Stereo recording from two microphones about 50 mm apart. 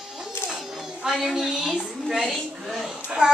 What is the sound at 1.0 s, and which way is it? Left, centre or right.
Music, centre.